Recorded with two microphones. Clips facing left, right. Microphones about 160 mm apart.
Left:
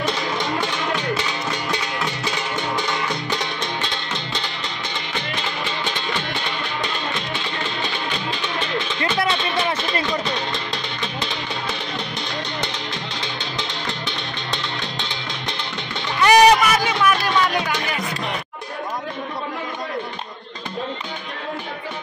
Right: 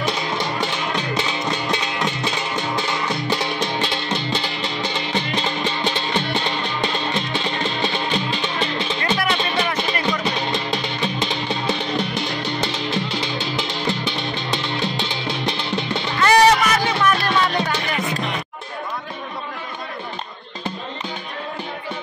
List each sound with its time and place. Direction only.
9.2 s music: 25° left (ahead or behind)
13.4 s music: 20° left (ahead or behind)
16.2 s music: 15° left (ahead or behind)